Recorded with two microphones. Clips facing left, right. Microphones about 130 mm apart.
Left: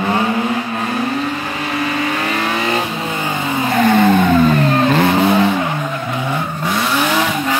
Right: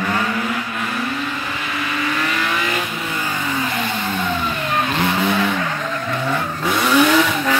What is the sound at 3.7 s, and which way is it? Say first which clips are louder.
Vehicle: left 11 dB; 55° left (ahead or behind).